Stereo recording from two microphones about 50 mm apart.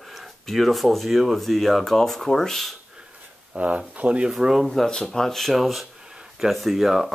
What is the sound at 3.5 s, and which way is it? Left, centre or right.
Speech, right.